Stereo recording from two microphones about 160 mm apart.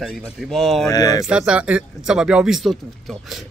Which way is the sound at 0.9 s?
25° left (ahead or behind).